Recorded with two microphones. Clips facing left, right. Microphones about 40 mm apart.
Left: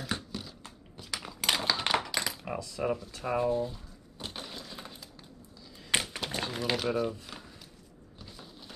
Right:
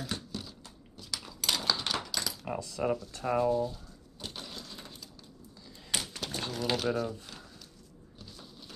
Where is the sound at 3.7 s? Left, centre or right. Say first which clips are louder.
Left 1 dB; centre.